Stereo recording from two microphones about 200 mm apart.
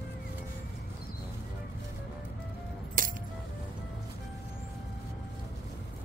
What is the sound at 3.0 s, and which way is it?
Music, 45° right (ahead or behind).